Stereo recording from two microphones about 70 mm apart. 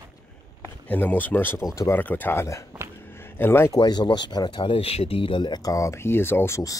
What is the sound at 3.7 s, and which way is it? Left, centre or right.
Speech, left.